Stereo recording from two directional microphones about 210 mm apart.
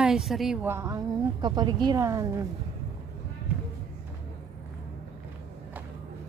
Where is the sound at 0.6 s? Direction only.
10° right (ahead or behind).